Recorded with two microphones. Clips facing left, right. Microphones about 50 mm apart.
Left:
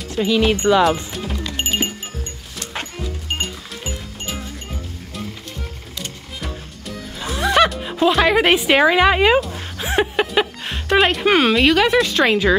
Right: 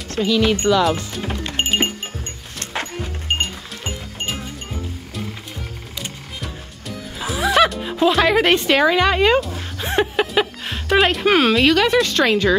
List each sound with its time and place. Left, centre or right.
0.2 s speech: centre
1.4 s music: right
7.2 s music: centre
9.4 s music: centre